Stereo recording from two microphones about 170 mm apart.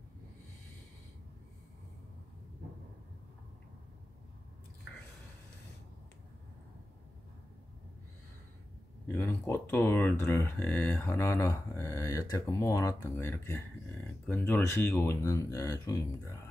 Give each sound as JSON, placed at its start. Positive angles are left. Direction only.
{"t": 9.0, "sound": "speech", "side_deg": 10}